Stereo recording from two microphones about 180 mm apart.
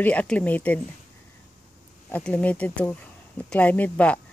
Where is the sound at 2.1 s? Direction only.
10° left (ahead or behind).